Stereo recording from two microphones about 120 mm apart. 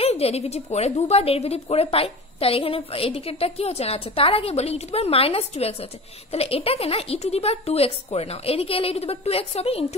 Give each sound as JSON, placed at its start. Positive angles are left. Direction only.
{"t": 0.0, "sound": "a woman's voice", "side_deg": 60}